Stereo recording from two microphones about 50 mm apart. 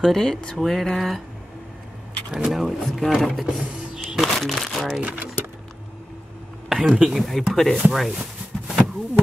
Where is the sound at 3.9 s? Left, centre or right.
Centre.